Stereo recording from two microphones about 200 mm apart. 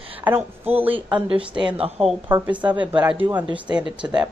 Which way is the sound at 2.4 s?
5° right (ahead or behind).